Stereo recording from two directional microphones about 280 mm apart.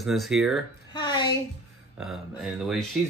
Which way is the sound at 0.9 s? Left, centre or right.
Centre.